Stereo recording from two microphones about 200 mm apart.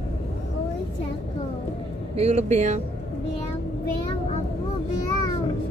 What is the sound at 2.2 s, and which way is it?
Speech, 35° right (ahead or behind).